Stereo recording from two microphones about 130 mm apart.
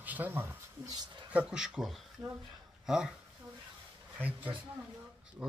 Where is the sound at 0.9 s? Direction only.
35° right (ahead or behind).